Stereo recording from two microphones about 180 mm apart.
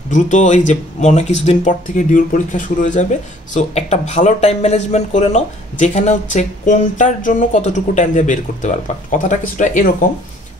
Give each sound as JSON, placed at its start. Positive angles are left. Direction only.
{"t": 0.1, "sound": "speech", "side_deg": 40}